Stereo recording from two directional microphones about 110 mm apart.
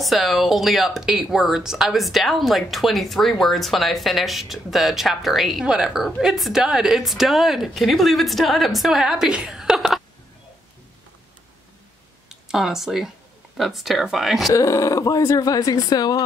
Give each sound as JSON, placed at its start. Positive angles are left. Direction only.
{"t": 0.0, "sound": "speech", "side_deg": 0}
{"t": 12.3, "sound": "speech", "side_deg": -5}
{"t": 14.5, "sound": "speech", "side_deg": 30}